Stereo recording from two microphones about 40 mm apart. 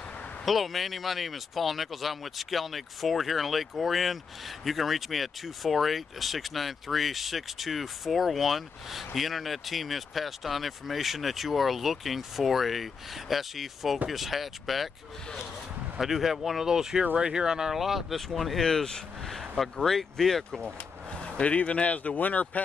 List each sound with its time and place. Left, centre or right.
0.5 s speech: centre
16.0 s speech: centre
20.6 s speech: left